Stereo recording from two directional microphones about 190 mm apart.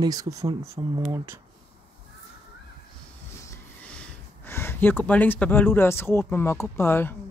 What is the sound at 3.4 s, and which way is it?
Speech, 10° left (ahead or behind).